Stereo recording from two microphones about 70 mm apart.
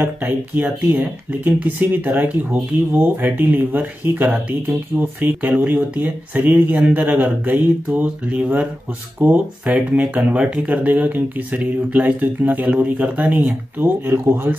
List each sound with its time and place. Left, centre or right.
0.0 s speech: right